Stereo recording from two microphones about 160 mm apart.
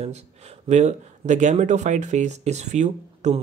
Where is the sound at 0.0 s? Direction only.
40° right (ahead or behind).